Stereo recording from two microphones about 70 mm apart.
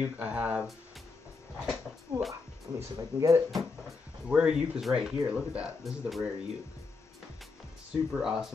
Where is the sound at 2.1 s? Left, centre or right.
Right.